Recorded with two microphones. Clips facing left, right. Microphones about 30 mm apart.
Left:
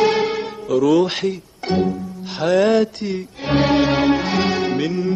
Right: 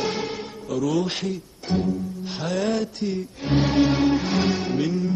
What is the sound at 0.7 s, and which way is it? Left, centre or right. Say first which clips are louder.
Music: left 8 dB; left.